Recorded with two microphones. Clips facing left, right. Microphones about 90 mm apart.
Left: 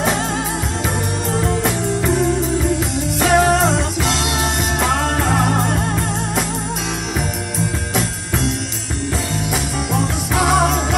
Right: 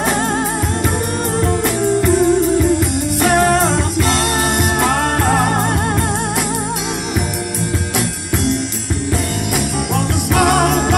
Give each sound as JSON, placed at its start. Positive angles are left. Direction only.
{"t": 3.2, "sound": "music", "side_deg": -50}
{"t": 4.8, "sound": "music", "side_deg": -55}
{"t": 9.9, "sound": "music", "side_deg": -60}